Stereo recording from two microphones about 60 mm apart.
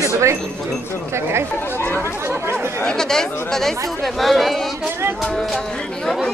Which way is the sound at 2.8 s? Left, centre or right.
Centre.